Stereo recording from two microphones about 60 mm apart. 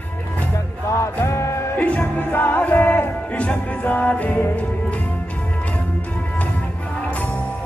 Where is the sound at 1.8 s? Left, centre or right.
Left.